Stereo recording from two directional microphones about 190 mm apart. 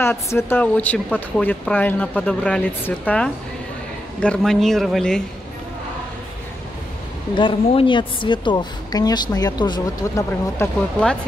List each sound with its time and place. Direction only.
0.0 s a man's voice: 15° left (ahead or behind)
7.3 s a woman's voice: 25° left (ahead or behind)